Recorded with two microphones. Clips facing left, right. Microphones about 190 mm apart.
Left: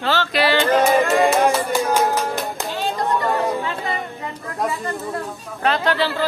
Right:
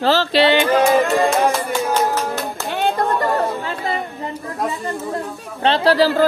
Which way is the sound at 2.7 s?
60° right (ahead or behind).